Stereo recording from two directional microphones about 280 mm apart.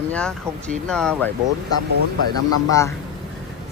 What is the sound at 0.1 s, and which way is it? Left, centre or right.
Speech, centre.